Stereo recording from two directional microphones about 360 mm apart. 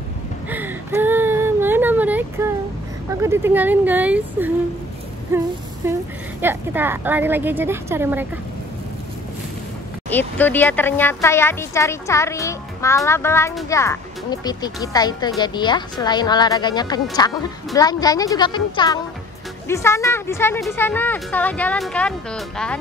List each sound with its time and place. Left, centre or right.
0.5 s whimper: centre
3.2 s a woman's voice: centre
5.8 s a woman's voice: centre
10.0 s a woman's voice: centre